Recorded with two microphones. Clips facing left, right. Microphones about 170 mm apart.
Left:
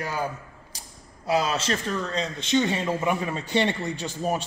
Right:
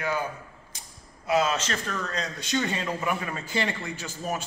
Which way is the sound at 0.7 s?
35° left (ahead or behind).